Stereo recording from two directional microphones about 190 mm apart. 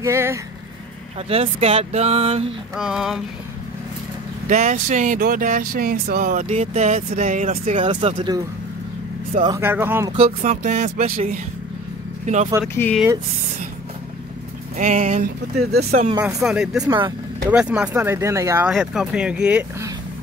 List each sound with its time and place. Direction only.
0.0 s speech: 15° right (ahead or behind)
1.3 s speech: 30° right (ahead or behind)
2.7 s speech: centre (ahead or behind)
4.5 s speech: 40° right (ahead or behind)
7.8 s speech: 25° right (ahead or behind)
9.6 s speech: 10° right (ahead or behind)
10.1 s speech: 35° right (ahead or behind)
12.7 s speech: 10° left (ahead or behind)
14.8 s speech: 40° right (ahead or behind)
16.2 s speech: 20° right (ahead or behind)
16.4 s speech: 5° right (ahead or behind)
16.8 s speech: 20° right (ahead or behind)
17.5 s speech: 5° right (ahead or behind)
18.7 s speech: centre (ahead or behind)